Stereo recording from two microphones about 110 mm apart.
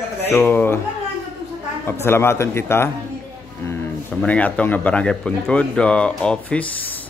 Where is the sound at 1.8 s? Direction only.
25° left (ahead or behind).